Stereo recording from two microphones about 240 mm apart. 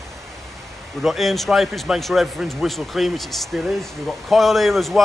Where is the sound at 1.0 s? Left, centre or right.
Centre.